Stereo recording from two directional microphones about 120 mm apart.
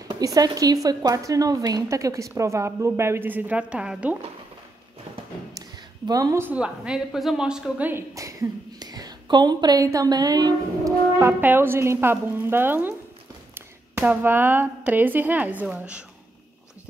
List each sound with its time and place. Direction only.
0.1 s a woman's voice: 30° right (ahead or behind); by 4.2 s 10° right (ahead or behind)
6.0 s a woman's voice: 30° right (ahead or behind)
6.4 s a woman's voice: 10° right (ahead or behind)
7.9 s a woman's voice: 25° right (ahead or behind)
11.1 s a woman's voice: 20° right (ahead or behind)